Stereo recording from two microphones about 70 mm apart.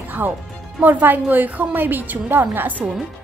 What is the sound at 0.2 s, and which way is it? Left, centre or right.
A woman's voice, right.